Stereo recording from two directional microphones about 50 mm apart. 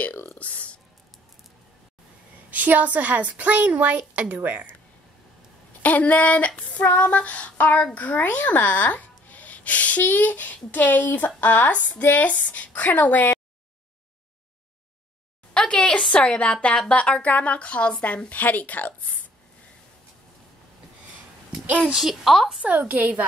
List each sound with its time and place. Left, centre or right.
0.0 s speech: left
2.5 s a woman's voice: right
5.8 s female singing: left
15.5 s a sound: centre
16.2 s a woman's voice: left
21.8 s a woman's voice: centre
22.2 s a woman's voice: centre
22.6 s a woman's voice: right